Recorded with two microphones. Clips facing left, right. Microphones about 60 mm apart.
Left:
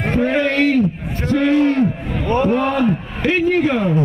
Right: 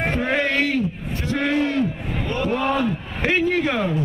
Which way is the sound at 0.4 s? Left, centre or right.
Left.